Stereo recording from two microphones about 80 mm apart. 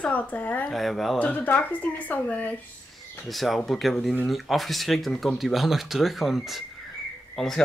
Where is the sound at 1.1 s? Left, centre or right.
Centre.